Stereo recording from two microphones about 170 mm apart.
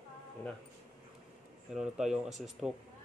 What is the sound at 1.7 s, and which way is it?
Speech, 5° right (ahead or behind).